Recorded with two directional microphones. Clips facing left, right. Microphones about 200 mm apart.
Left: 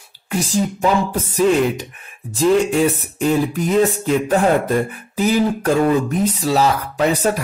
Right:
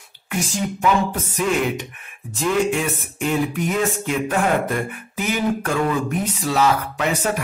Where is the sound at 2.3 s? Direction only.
35° left (ahead or behind).